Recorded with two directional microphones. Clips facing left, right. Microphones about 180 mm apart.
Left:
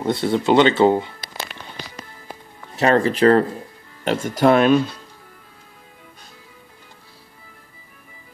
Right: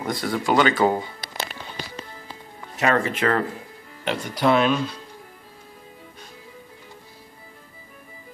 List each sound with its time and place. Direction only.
0.0 s speech: 25° left (ahead or behind)
2.8 s speech: 35° left (ahead or behind)
4.0 s speech: 45° left (ahead or behind)